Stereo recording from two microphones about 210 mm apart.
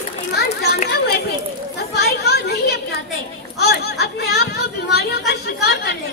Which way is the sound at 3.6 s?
50° left (ahead or behind).